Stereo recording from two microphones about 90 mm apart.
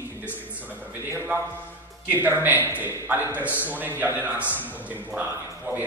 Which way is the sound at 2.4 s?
20° right (ahead or behind).